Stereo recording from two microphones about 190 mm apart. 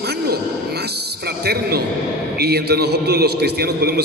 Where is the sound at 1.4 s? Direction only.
55° right (ahead or behind).